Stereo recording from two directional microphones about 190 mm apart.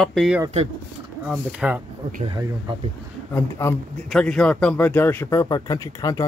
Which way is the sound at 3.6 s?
15° left (ahead or behind).